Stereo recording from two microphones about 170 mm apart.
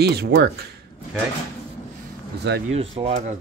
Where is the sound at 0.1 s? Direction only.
70° right (ahead or behind).